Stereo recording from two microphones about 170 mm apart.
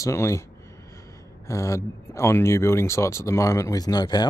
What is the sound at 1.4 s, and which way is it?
Speech, 15° left (ahead or behind).